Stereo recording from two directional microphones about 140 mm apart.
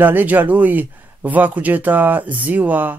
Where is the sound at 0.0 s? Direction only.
15° right (ahead or behind).